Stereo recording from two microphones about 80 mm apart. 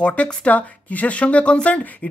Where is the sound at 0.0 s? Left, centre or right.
Centre.